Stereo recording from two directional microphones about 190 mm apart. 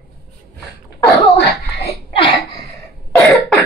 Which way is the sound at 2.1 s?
25° left (ahead or behind).